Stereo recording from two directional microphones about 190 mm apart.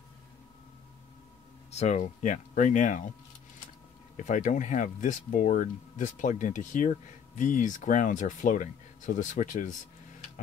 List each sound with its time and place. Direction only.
1.7 s speech: 35° left (ahead or behind)
4.2 s speech: 40° left (ahead or behind)